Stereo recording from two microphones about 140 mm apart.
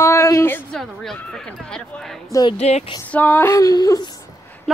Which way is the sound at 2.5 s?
50° left (ahead or behind).